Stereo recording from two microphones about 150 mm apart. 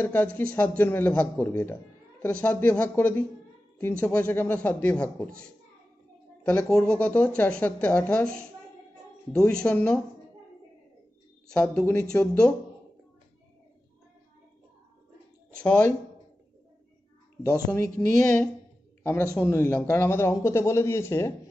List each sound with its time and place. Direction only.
0.0 s speech: 15° left (ahead or behind)
6.4 s speech: 10° left (ahead or behind)
11.4 s speech: 5° left (ahead or behind)
15.6 s speech: 10° left (ahead or behind)
17.6 s speech: 15° left (ahead or behind)
19.4 s speech: 15° left (ahead or behind)